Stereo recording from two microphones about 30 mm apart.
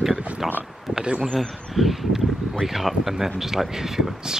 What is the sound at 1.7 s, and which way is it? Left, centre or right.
Speech, centre.